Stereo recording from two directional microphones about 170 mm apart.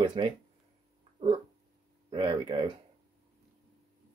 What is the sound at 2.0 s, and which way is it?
Speech, 30° right (ahead or behind).